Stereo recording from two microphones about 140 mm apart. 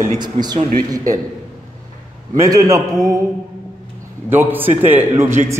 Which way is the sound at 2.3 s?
25° right (ahead or behind).